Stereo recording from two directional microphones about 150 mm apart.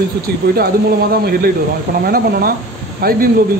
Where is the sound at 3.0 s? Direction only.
90° right.